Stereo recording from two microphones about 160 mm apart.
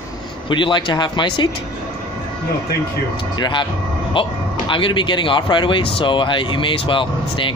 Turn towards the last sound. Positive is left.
turn(degrees=30)  # may be behind; listen again after turning